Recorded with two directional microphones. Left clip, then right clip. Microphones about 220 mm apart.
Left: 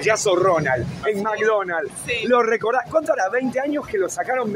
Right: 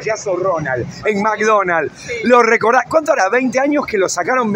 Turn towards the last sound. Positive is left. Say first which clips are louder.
# right 6 dB
turn(degrees=-40)  # may be behind; listen again after turning